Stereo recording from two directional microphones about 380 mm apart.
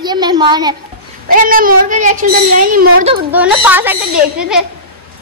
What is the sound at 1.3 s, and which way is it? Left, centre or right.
A child's voice, right.